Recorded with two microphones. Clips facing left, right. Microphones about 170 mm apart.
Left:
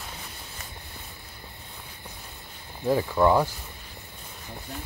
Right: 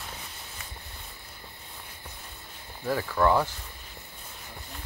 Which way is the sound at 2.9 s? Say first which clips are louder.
Left 3 dB; 20° left (ahead or behind).